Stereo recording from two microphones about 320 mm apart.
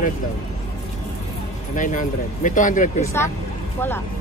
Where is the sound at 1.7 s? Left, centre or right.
Left.